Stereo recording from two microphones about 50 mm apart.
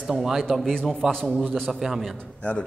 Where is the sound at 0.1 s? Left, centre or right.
Centre.